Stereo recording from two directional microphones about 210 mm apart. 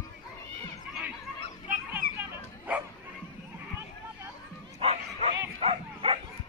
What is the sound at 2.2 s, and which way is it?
Bow-wow, 5° right (ahead or behind).